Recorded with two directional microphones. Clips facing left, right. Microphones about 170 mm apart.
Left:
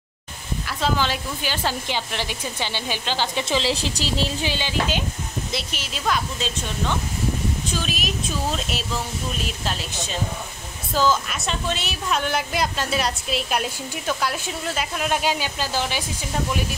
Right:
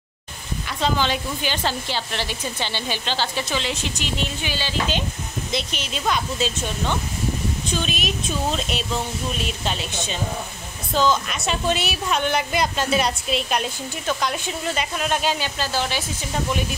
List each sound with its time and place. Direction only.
0.7 s speech: 5° left (ahead or behind)
3.4 s a woman's voice: 30° left (ahead or behind)
4.6 s a woman's voice: 10° left (ahead or behind)
7.7 s a woman's voice: centre (ahead or behind)
9.7 s a woman's voice: centre (ahead or behind)
11.7 s a woman's voice: 10° right (ahead or behind)
12.1 s a woman's voice: centre (ahead or behind)